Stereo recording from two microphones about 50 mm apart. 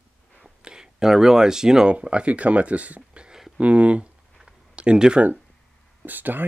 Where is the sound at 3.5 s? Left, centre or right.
Right.